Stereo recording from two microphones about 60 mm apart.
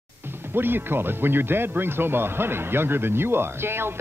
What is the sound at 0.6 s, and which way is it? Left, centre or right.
Speech, right.